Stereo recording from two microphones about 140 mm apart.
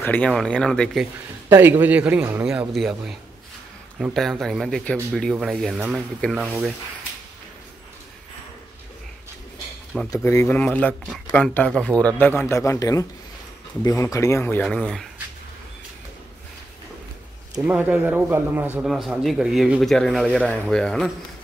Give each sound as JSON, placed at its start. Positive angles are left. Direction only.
{"t": 0.0, "sound": "speech", "side_deg": 10}
{"t": 1.5, "sound": "speech", "side_deg": -15}
{"t": 2.7, "sound": "speech", "side_deg": 0}
{"t": 10.1, "sound": "speech", "side_deg": 20}
{"t": 17.6, "sound": "speech", "side_deg": -10}
{"t": 18.9, "sound": "speech", "side_deg": 0}